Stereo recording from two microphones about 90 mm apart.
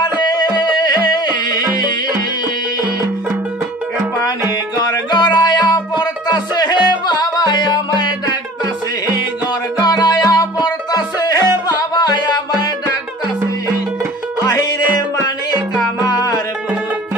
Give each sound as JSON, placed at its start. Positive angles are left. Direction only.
{"t": 0.4, "sound": "music", "side_deg": 50}
{"t": 5.1, "sound": "music", "side_deg": 50}
{"t": 9.8, "sound": "music", "side_deg": 45}
{"t": 14.4, "sound": "music", "side_deg": 45}
{"t": 16.1, "sound": "music", "side_deg": 45}